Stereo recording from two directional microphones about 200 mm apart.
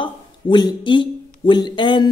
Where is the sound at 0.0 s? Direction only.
20° left (ahead or behind).